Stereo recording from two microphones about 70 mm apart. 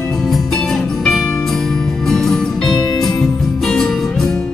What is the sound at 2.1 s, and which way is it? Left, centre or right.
Music, centre.